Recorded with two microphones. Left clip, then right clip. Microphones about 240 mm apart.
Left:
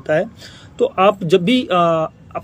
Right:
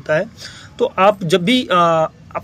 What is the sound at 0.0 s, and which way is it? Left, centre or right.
A man's voice, centre.